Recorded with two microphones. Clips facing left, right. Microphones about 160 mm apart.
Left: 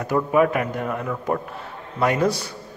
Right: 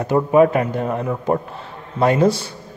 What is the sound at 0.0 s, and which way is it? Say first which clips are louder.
Speech: right 5 dB; 25° right (ahead or behind).